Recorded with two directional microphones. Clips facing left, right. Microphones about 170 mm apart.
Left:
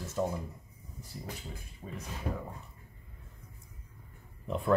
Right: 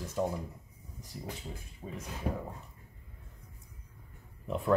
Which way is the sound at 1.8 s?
20° right (ahead or behind).